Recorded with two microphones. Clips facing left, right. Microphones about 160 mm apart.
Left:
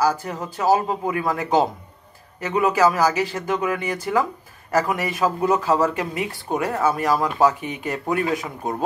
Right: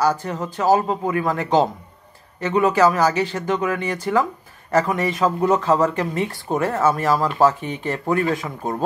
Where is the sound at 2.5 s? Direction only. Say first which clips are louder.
Right 2 dB; 30° right (ahead or behind).